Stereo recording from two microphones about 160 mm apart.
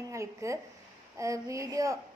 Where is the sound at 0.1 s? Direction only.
20° right (ahead or behind).